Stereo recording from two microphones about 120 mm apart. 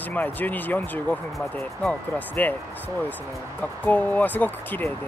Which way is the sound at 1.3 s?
Centre (ahead or behind).